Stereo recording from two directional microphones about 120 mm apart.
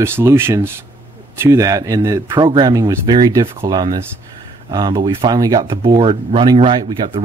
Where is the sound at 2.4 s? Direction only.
35° right (ahead or behind).